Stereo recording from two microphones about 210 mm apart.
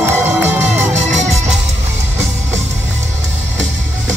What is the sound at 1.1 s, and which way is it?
Music, 35° right (ahead or behind).